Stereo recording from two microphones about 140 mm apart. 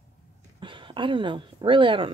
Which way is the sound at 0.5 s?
35° right (ahead or behind).